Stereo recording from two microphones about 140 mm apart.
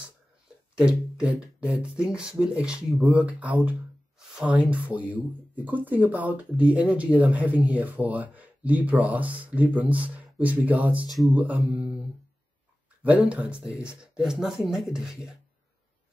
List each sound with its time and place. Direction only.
0.7 s speech: 5° right (ahead or behind)
11.1 s speech: centre (ahead or behind)
13.0 s speech: 10° right (ahead or behind)